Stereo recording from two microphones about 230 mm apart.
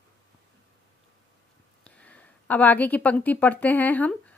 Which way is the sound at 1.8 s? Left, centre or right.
Centre.